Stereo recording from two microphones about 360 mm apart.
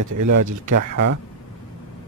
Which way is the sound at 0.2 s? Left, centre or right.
Right.